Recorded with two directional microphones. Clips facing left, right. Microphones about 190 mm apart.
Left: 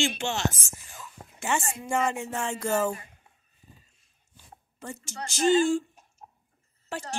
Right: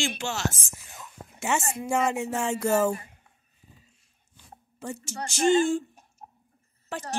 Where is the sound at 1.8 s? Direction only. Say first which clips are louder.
Right 2 dB; 10° right (ahead or behind).